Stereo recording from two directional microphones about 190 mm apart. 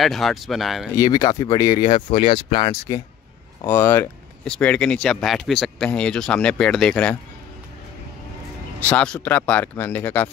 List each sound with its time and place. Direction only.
0.0 s speech: centre (ahead or behind)
0.9 s speech: 20° left (ahead or behind)
8.8 s speech: 5° left (ahead or behind)